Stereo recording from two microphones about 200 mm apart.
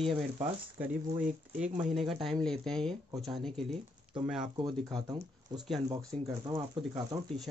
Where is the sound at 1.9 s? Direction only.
Centre (ahead or behind).